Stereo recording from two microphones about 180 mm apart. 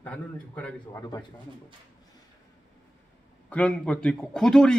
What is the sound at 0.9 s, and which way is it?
Speech, 20° left (ahead or behind).